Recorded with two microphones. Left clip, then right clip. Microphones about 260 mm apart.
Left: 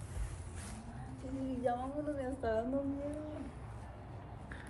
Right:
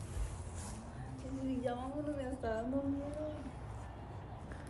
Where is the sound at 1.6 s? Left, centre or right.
Centre.